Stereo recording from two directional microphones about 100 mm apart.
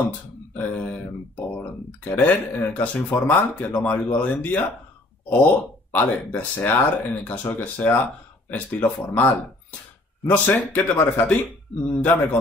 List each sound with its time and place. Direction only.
0.6 s speech: 15° left (ahead or behind)